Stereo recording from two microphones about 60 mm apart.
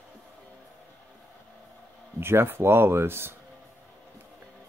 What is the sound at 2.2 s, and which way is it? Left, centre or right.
Speech, right.